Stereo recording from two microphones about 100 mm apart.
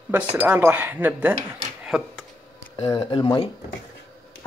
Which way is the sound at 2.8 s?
50° left (ahead or behind).